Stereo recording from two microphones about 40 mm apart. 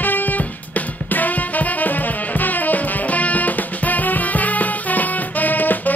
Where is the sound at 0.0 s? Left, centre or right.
Left.